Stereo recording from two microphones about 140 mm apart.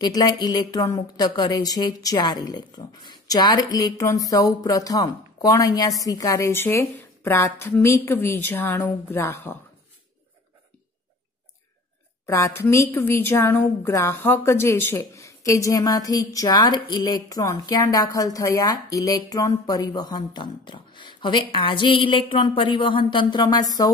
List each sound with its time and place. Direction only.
0.0 s a woman's voice: 30° left (ahead or behind)
12.3 s a woman's voice: 20° left (ahead or behind)